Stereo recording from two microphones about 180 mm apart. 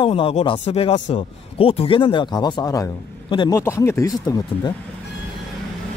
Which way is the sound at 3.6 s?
15° left (ahead or behind).